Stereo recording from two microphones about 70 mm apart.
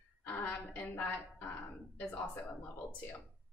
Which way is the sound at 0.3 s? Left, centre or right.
Centre.